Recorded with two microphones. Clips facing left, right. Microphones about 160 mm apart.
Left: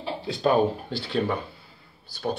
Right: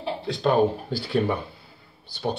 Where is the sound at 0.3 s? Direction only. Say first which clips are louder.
Right 1 dB; 5° left (ahead or behind).